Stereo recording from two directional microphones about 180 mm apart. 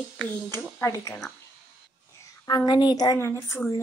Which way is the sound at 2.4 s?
25° left (ahead or behind).